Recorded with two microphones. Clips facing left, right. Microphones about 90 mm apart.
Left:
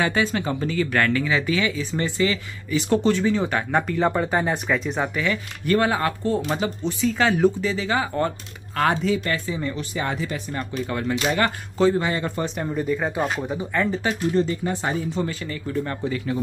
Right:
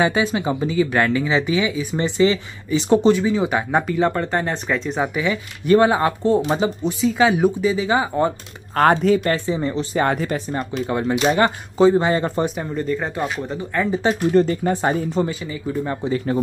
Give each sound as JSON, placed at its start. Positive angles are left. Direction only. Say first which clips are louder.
{"t": 0.0, "sound": "speech", "louder": "right 3 dB", "side_deg": -15}
{"t": 3.8, "sound": "speech", "louder": "right 2 dB", "side_deg": 0}
{"t": 5.0, "sound": "speech", "louder": "right 3 dB", "side_deg": -15}
{"t": 8.7, "sound": "speech", "louder": "right 6 dB", "side_deg": -50}
{"t": 9.3, "sound": "speech", "louder": "right 5 dB", "side_deg": -30}
{"t": 9.9, "sound": "speech", "louder": "right 8 dB", "side_deg": -50}
{"t": 10.6, "sound": "speech", "louder": "right 4 dB", "side_deg": -25}
{"t": 12.0, "sound": "speech", "louder": "right 5 dB", "side_deg": -35}
{"t": 12.4, "sound": "speech", "louder": "right 1 dB", "side_deg": 0}
{"t": 14.3, "sound": "speech", "louder": "right 5 dB", "side_deg": -50}
{"t": 15.2, "sound": "speech", "louder": "right 3 dB", "side_deg": -10}